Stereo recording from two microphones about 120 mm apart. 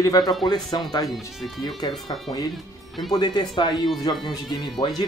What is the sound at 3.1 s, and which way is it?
Speech, 35° left (ahead or behind).